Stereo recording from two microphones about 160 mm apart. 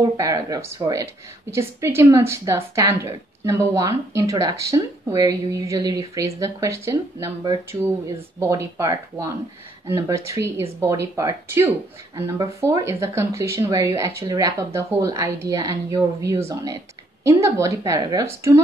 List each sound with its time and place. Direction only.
0.0 s a woman's voice: 20° right (ahead or behind)